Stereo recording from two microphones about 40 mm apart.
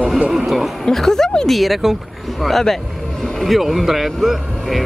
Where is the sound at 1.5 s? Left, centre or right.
Centre.